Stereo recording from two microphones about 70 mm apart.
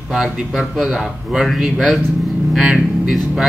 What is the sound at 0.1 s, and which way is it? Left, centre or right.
A man's voice, centre.